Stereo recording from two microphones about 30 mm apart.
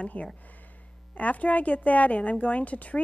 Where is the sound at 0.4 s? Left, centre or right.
Left.